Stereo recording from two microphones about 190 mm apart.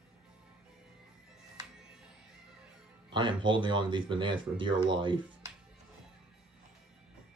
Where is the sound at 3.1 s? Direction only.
25° right (ahead or behind).